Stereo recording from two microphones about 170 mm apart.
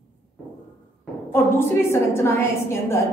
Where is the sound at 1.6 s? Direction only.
15° left (ahead or behind).